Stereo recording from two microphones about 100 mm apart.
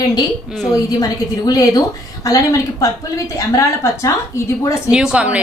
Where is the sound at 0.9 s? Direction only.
40° left (ahead or behind).